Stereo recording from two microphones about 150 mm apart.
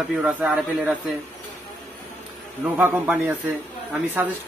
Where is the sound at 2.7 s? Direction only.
10° right (ahead or behind).